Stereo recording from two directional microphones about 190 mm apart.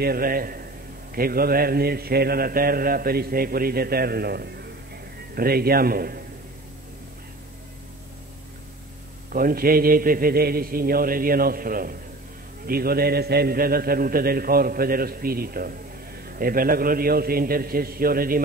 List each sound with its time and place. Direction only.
0.0 s a man's voice: 50° right (ahead or behind)
9.3 s a man's voice: 50° right (ahead or behind)